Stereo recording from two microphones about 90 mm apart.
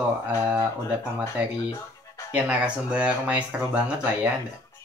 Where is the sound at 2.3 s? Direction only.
10° right (ahead or behind).